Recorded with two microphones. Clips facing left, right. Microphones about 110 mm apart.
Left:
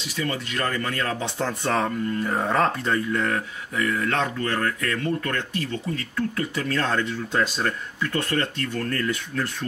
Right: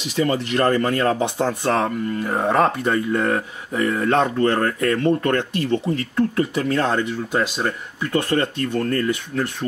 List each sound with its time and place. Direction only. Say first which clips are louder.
0.1 s speech: right 8 dB; 20° right (ahead or behind)
1.2 s speech: right 6 dB; 15° right (ahead or behind)